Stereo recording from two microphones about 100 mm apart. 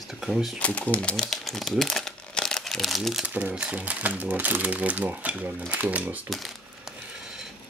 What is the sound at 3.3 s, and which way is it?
Speech, 15° right (ahead or behind).